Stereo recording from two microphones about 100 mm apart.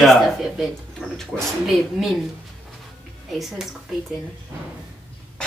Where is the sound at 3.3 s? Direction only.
5° right (ahead or behind).